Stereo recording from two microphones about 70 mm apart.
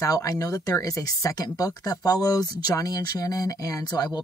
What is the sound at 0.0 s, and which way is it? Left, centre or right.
Speech, left.